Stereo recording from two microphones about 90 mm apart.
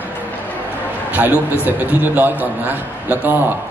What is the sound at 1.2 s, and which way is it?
A man's voice, 15° right (ahead or behind).